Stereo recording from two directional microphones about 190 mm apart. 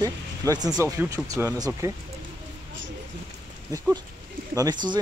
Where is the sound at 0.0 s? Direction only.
20° right (ahead or behind).